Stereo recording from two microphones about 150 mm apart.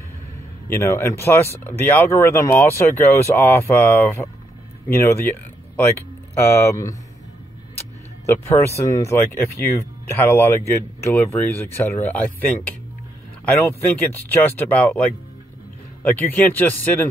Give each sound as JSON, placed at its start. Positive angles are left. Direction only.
{"t": 0.7, "sound": "speech", "side_deg": 15}
{"t": 8.3, "sound": "speech", "side_deg": 15}
{"t": 14.3, "sound": "speech", "side_deg": 15}